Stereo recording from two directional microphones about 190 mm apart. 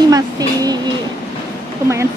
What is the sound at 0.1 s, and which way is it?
Music, 20° right (ahead or behind).